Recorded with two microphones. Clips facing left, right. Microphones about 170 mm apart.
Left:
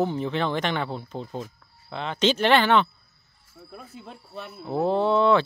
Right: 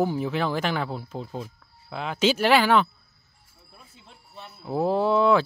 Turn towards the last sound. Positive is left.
turn(degrees=-5)  # may be behind; listen again after turning